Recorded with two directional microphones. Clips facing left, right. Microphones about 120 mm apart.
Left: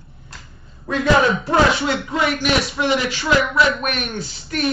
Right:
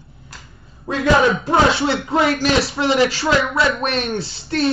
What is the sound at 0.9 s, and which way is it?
Speech, 20° right (ahead or behind).